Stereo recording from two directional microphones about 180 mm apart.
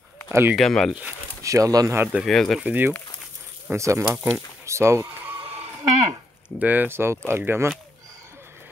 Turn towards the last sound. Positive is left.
turn(degrees=-10)  # may be behind; listen again after turning